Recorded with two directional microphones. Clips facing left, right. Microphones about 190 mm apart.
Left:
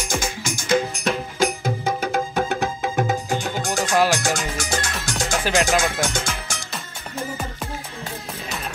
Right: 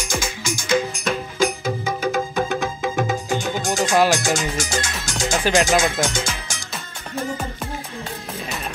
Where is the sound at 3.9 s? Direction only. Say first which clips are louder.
Right 1 dB; centre (ahead or behind).